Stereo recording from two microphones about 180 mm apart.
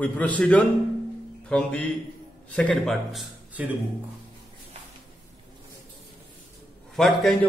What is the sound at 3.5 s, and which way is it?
Speech, 10° right (ahead or behind).